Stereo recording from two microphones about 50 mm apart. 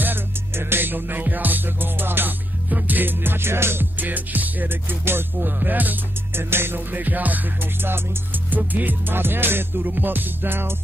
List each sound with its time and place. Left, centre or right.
0.0 s music: right
4.0 s music: right
6.3 s music: right
8.5 s music: right